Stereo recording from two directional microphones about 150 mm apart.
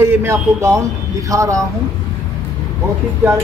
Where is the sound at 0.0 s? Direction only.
15° right (ahead or behind).